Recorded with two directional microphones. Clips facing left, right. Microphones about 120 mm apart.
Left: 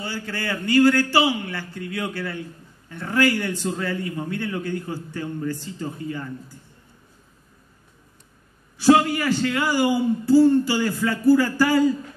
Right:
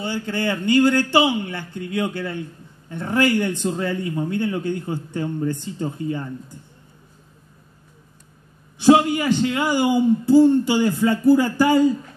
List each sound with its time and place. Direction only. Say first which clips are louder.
0.0 s a man's voice: right 6 dB; 20° right (ahead or behind)
8.7 s a man's voice: right 2 dB; 20° right (ahead or behind)